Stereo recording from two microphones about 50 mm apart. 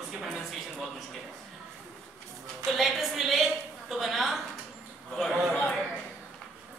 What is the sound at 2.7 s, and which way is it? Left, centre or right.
A man's voice, centre.